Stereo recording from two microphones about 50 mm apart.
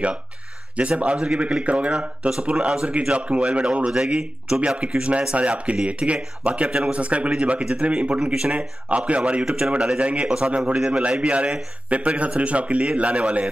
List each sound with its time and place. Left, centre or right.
0.7 s speech: right